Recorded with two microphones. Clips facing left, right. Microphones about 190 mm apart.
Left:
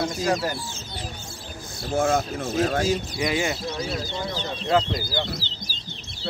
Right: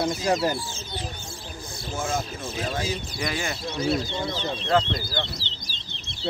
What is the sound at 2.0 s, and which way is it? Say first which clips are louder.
Speech: left 7 dB; 65° left (ahead or behind).